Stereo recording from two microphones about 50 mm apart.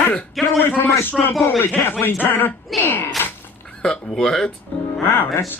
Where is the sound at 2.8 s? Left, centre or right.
Left.